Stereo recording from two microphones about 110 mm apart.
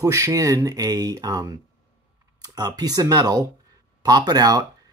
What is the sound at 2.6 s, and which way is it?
Speech, 35° right (ahead or behind).